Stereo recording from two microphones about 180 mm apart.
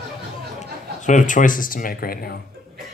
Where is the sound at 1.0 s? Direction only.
45° left (ahead or behind).